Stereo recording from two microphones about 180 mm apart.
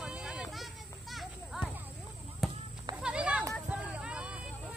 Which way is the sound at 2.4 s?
Centre (ahead or behind).